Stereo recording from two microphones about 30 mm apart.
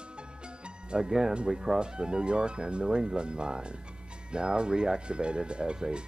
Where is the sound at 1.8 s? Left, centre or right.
Right.